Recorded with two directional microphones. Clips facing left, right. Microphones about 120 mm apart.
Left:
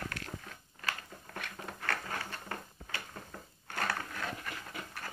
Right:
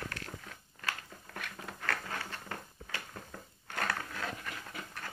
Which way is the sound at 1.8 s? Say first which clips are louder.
Even; 5° left (ahead or behind).